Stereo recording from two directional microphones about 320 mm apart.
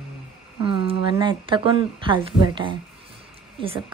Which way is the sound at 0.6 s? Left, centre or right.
Centre.